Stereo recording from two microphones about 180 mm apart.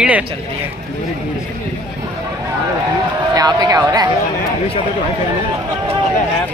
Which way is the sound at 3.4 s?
20° right (ahead or behind).